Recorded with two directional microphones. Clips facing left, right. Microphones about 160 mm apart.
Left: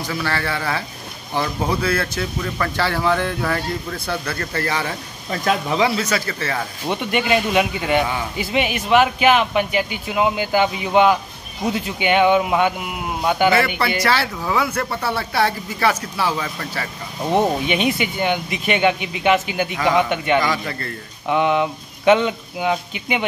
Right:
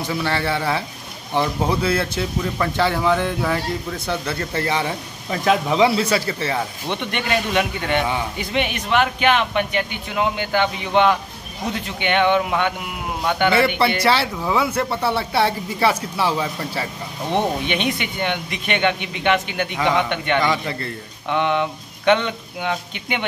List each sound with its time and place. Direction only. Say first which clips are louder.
0.0 s speech: right 2 dB; 25° right (ahead or behind)
5.9 s speech: right 2 dB; 30° right (ahead or behind)
6.2 s speech: right 2 dB; 20° right (ahead or behind)
6.9 s speech: left 5 dB; 5° left (ahead or behind)
14.0 s speech: right 1 dB; 25° right (ahead or behind)
17.3 s speech: left 3 dB; 5° left (ahead or behind)
20.5 s speech: right 1 dB; 25° right (ahead or behind)
21.3 s speech: left 2 dB; 5° left (ahead or behind)